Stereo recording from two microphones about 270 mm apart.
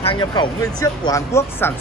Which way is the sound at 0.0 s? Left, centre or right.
Centre.